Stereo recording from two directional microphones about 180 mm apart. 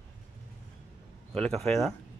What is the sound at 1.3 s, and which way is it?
Speech, 5° left (ahead or behind).